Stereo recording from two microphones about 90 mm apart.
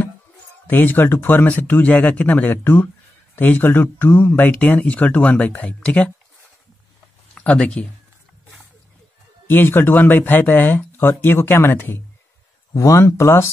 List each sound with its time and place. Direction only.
0.7 s speech: 20° left (ahead or behind)
7.3 s speech: 10° left (ahead or behind)
9.5 s speech: 25° left (ahead or behind)
12.7 s speech: 35° left (ahead or behind)